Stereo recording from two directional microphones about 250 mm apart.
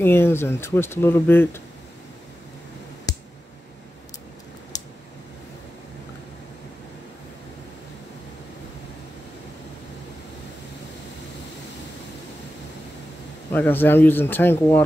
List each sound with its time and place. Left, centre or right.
0.0 s speech: centre
4.7 s a sound: centre
13.5 s speech: centre